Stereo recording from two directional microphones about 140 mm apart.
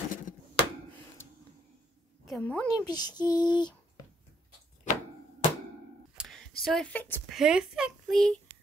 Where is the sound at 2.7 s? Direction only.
30° left (ahead or behind).